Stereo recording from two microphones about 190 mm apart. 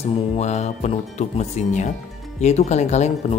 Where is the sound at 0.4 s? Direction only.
35° left (ahead or behind).